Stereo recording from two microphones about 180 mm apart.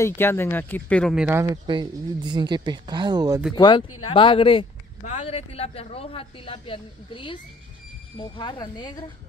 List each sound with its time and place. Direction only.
0.0 s speech: 15° left (ahead or behind)
1.1 s speech: 5° right (ahead or behind)
1.4 s speech: 20° right (ahead or behind)
3.5 s a woman's voice: 25° left (ahead or behind)